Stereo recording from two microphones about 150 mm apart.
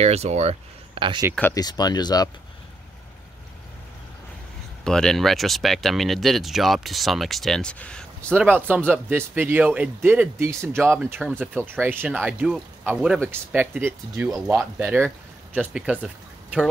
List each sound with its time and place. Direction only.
0.0 s speech: 45° right (ahead or behind)
1.5 s speech: 25° left (ahead or behind)
4.8 s speech: 5° left (ahead or behind)
8.4 s speech: 10° right (ahead or behind)
14.8 s speech: 10° right (ahead or behind)